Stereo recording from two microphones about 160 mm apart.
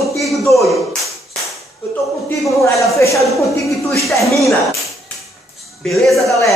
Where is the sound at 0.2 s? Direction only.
Centre (ahead or behind).